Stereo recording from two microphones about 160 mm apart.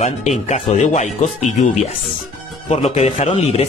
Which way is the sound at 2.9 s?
45° left (ahead or behind).